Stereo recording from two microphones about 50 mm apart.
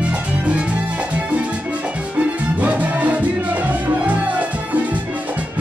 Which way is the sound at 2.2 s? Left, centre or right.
Right.